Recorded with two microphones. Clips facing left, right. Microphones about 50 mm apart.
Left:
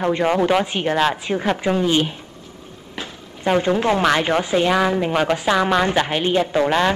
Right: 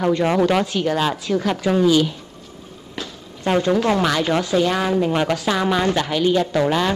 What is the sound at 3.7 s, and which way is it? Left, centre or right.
Speech, left.